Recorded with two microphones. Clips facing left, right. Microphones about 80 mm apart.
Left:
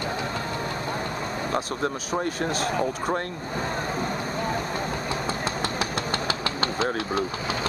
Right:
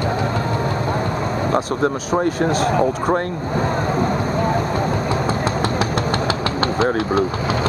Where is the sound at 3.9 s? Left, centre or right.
Right.